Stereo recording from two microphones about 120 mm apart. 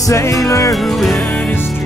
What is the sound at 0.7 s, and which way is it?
Music, centre (ahead or behind).